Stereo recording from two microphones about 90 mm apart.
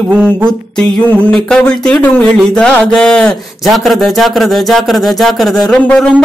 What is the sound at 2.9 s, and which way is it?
Speech, 10° left (ahead or behind).